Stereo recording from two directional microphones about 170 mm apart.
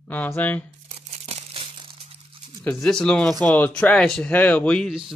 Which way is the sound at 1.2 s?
35° right (ahead or behind).